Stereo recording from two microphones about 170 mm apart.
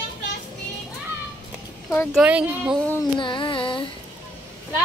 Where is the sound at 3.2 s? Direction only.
30° left (ahead or behind).